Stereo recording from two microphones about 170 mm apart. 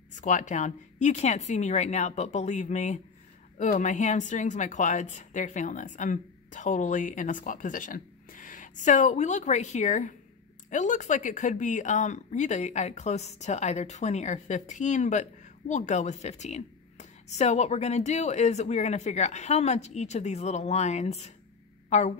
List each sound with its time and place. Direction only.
0.1 s a woman's voice: 45° left (ahead or behind)